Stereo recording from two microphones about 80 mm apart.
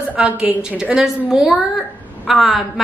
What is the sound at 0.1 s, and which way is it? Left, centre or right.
A woman's voice, centre.